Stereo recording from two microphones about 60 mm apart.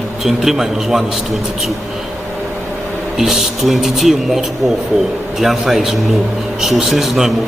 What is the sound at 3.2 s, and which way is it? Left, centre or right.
A man's voice, centre.